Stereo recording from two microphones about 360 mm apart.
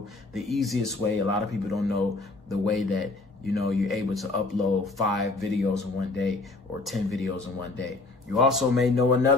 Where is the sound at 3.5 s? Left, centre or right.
Centre.